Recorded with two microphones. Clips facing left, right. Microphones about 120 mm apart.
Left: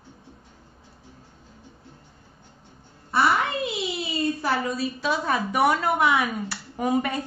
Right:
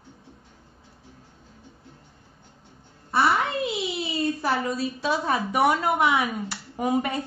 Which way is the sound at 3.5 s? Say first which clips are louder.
Right 1 dB; centre (ahead or behind).